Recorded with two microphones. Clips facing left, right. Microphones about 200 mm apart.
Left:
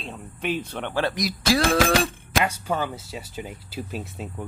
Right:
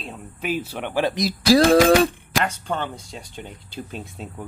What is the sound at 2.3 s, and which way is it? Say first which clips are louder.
Speech: even; 10° left (ahead or behind).